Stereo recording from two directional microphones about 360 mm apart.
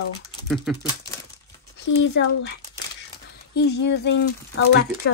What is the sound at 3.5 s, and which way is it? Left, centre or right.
Speech, left.